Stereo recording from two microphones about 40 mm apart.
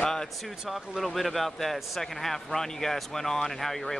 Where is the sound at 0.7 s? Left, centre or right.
Centre.